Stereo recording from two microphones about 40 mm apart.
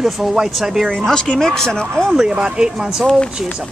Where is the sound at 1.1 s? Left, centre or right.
Left.